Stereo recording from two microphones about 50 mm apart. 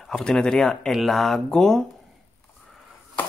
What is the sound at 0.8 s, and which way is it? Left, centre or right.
Speech, centre.